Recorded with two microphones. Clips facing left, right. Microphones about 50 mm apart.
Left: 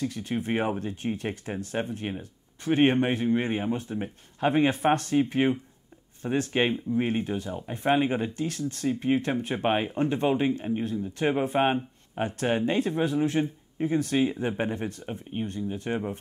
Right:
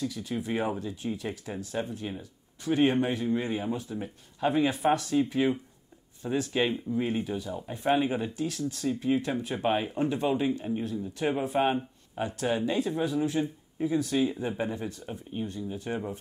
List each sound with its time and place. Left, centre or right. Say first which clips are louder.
0.0 s speech: left 3 dB; left
6.2 s speech: left 2 dB; left